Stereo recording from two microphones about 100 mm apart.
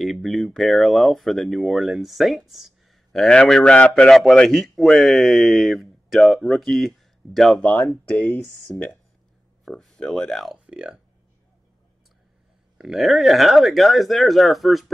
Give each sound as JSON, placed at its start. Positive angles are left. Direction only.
{"t": 0.0, "sound": "speech", "side_deg": 0}
{"t": 8.7, "sound": "speech", "side_deg": 25}
{"t": 9.7, "sound": "speech", "side_deg": 5}
{"t": 10.7, "sound": "speech", "side_deg": -10}
{"t": 12.7, "sound": "speech", "side_deg": -5}